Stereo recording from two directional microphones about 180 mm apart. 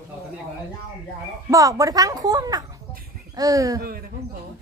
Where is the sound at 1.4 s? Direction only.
20° right (ahead or behind).